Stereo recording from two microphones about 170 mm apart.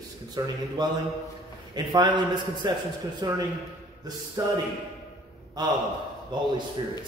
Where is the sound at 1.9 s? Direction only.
25° right (ahead or behind).